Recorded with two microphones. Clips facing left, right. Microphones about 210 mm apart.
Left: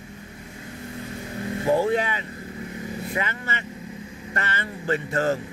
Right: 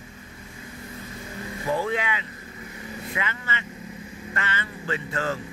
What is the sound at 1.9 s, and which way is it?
Speech, 40° left (ahead or behind).